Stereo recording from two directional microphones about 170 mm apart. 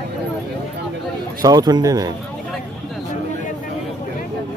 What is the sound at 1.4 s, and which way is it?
Speech, 25° right (ahead or behind).